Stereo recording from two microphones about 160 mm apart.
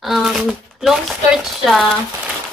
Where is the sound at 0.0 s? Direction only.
Centre (ahead or behind).